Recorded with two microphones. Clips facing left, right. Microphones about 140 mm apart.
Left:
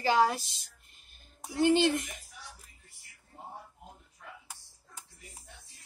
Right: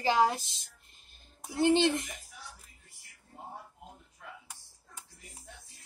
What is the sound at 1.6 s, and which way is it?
Speech, 25° right (ahead or behind).